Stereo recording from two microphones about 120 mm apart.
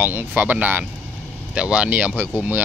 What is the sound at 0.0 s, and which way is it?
Speech, 15° right (ahead or behind).